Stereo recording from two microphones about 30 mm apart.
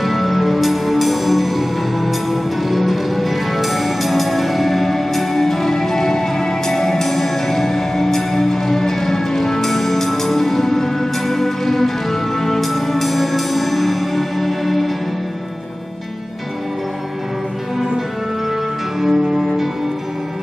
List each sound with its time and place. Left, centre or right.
0.0 s music: centre
18.9 s music: centre